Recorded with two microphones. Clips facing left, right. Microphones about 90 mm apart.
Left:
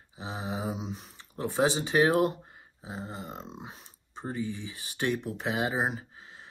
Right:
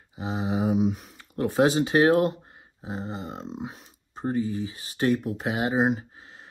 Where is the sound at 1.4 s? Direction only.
45° right (ahead or behind).